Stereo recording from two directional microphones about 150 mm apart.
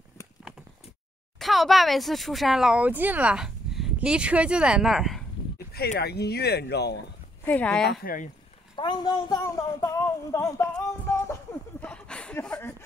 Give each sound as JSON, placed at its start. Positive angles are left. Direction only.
{"t": 1.4, "sound": "speech", "side_deg": 0}
{"t": 5.7, "sound": "speech", "side_deg": 90}
{"t": 7.4, "sound": "speech", "side_deg": 10}
{"t": 7.8, "sound": "speech", "side_deg": 85}
{"t": 8.7, "sound": "speech", "side_deg": 30}
{"t": 11.8, "sound": "a sound", "side_deg": 5}